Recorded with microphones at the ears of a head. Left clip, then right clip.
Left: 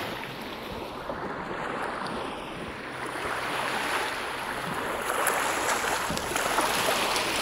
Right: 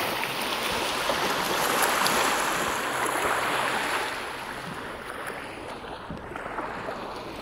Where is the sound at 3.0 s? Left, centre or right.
Right.